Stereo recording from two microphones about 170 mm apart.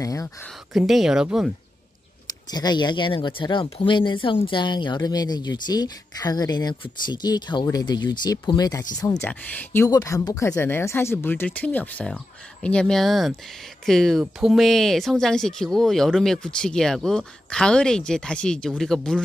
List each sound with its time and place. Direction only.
0.0 s speech: 20° left (ahead or behind)
0.7 s speech: centre (ahead or behind)
2.5 s speech: 25° left (ahead or behind); by 19.2 s 5° left (ahead or behind)